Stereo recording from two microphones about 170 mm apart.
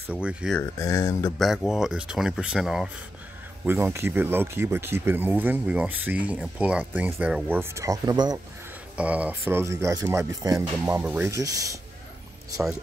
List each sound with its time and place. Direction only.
0.1 s speech: 5° right (ahead or behind)
0.6 s speech: 20° left (ahead or behind)
1.4 s speech: centre (ahead or behind)
3.6 s speech: 15° right (ahead or behind)
8.9 s speech: 10° right (ahead or behind)